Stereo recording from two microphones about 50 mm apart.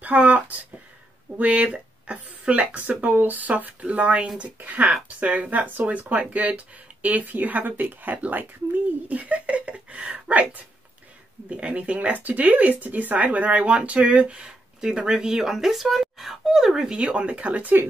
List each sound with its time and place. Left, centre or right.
0.0 s speech: right
2.7 s speech: right
12.1 s speech: right; by 16.9 s centre
16.9 s speech: right